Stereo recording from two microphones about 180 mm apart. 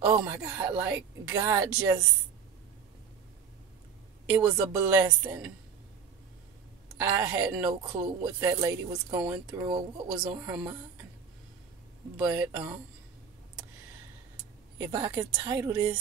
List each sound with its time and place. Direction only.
0.0 s speech: 10° right (ahead or behind)
4.3 s speech: 15° right (ahead or behind)
7.0 s speech: 15° right (ahead or behind)
9.5 s speech: 25° right (ahead or behind)
10.4 s speech: 10° right (ahead or behind)
12.2 s speech: 10° right (ahead or behind)
14.8 s speech: 20° right (ahead or behind)